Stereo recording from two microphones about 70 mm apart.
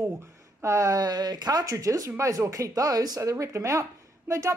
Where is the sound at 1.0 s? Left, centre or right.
Right.